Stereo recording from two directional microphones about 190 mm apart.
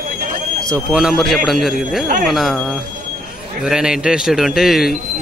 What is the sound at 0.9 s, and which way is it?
A man's voice, centre (ahead or behind).